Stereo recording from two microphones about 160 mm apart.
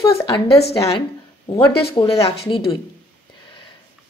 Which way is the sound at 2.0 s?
25° left (ahead or behind).